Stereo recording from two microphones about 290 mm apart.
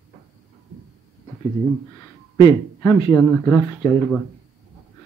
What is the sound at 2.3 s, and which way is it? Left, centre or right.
Speech, centre.